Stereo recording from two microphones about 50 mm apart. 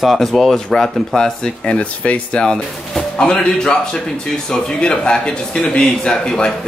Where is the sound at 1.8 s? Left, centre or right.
Left.